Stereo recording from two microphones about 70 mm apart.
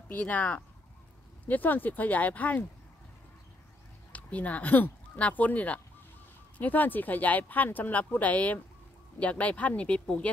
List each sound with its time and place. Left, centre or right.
0.1 s speech: left
4.1 s speech: left